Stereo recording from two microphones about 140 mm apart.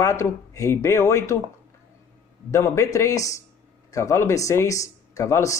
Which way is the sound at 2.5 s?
20° left (ahead or behind).